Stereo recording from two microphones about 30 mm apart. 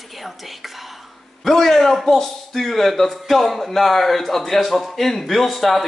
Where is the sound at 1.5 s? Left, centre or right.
Centre.